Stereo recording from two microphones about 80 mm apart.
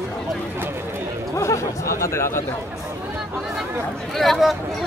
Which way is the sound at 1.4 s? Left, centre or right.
Left.